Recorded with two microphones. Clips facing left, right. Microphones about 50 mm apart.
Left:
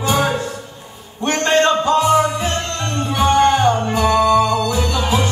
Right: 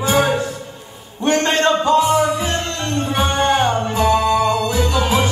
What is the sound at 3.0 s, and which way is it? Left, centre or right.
Music, right.